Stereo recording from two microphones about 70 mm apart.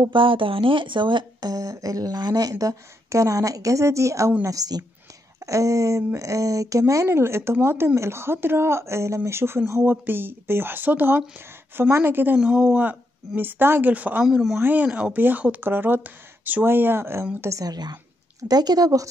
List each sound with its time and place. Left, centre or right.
1.0 s speech: right
1.4 s speech: right
2.5 s a woman's voice: right
4.5 s speech: right
5.4 s a woman's voice: right
12.4 s speech: centre
13.4 s speech: right
14.2 s speech: centre
14.6 s speech: right
17.4 s a woman's voice: right
17.6 s a woman's voice: right
18.4 s speech: right